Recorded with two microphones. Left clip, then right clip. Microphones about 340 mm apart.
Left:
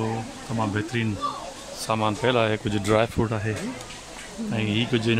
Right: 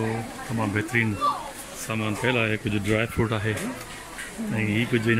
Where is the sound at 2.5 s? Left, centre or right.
Left.